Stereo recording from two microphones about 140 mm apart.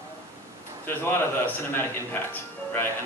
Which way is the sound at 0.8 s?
15° left (ahead or behind).